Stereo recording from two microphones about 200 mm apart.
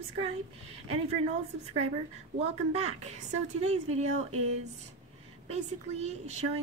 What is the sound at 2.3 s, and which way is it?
A woman's voice, 30° right (ahead or behind).